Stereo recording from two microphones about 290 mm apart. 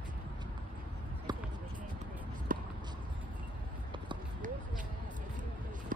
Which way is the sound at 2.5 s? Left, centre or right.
Right.